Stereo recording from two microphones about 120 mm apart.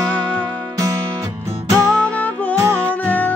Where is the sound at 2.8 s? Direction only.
15° left (ahead or behind).